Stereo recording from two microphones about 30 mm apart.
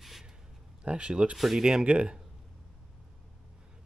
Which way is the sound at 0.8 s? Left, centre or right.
Right.